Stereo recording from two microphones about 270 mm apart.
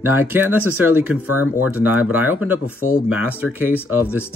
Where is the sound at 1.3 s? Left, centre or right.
Left.